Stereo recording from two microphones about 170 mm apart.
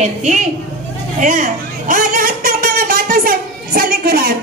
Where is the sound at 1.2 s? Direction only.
50° right (ahead or behind).